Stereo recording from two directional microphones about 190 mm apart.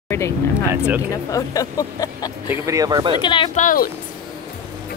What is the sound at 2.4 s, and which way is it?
Speech, 15° right (ahead or behind).